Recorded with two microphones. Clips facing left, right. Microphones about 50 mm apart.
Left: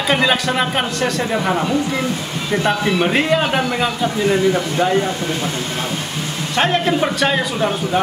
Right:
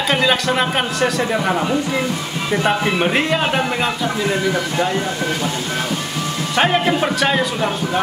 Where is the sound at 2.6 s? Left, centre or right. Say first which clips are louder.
Left 1 dB; centre.